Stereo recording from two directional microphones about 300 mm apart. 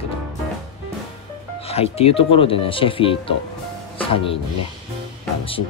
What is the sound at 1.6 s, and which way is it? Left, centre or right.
Speech, centre.